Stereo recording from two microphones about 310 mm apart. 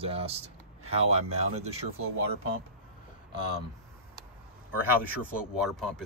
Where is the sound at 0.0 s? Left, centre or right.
Centre.